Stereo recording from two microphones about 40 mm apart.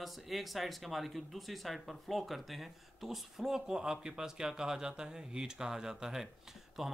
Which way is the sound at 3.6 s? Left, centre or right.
Centre.